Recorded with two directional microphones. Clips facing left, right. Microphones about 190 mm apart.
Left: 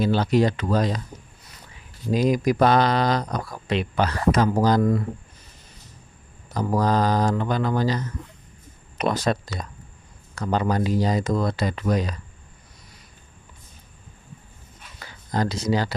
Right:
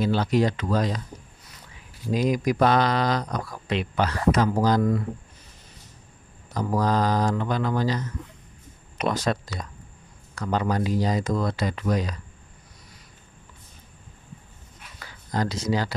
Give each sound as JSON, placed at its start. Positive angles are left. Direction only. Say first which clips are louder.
{"t": 0.0, "sound": "speech", "louder": "left 2 dB", "side_deg": 30}
{"t": 2.2, "sound": "speech", "louder": "left 2 dB", "side_deg": 35}
{"t": 6.5, "sound": "speech", "louder": "left 2 dB", "side_deg": 35}
{"t": 9.1, "sound": "speech", "louder": "left 2 dB", "side_deg": 30}
{"t": 15.0, "sound": "a sound", "louder": "left 2 dB", "side_deg": 30}